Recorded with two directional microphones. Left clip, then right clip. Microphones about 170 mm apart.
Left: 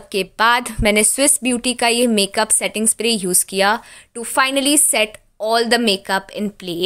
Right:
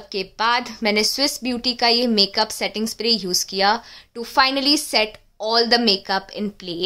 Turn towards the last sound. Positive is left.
turn(degrees=20)  # may be behind; listen again after turning